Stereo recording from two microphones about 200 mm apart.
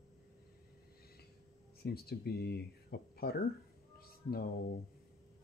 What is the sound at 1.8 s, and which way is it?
Speech, 50° left (ahead or behind).